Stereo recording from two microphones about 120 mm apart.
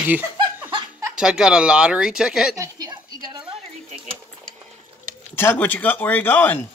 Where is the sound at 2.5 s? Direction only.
30° right (ahead or behind).